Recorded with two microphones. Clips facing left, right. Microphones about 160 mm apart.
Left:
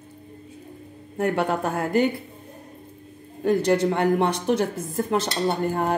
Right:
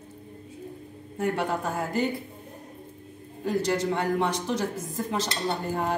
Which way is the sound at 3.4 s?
60° left (ahead or behind).